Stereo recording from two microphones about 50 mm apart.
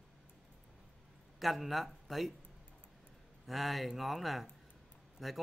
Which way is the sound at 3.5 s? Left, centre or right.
Centre.